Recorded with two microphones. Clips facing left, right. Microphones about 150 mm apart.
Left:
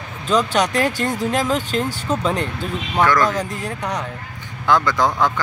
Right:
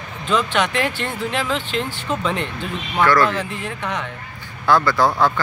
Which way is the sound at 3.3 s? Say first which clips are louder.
Left 1 dB; 40° left (ahead or behind).